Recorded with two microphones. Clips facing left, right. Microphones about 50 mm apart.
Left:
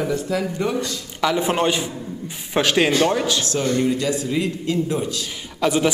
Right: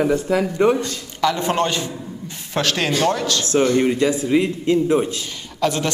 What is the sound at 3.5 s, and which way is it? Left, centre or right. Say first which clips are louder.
A man's voice: right 7 dB; right.